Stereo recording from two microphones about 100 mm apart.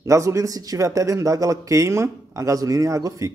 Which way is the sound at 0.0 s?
30° right (ahead or behind).